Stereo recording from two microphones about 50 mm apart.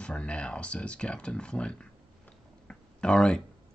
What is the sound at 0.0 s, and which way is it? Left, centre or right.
Speech, left.